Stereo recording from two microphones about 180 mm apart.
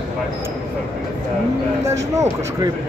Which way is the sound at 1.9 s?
15° right (ahead or behind).